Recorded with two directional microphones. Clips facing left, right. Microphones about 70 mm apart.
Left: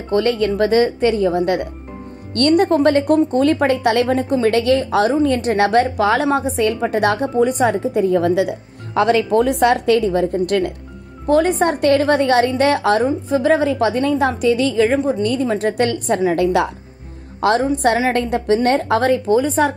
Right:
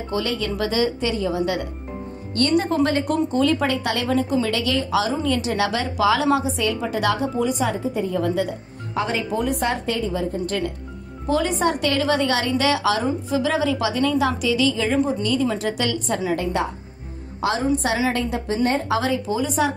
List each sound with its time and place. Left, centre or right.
0.1 s a woman's voice: left
17.4 s speech: left